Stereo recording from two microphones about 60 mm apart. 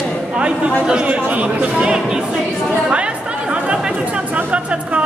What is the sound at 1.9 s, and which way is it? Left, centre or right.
Speech, centre.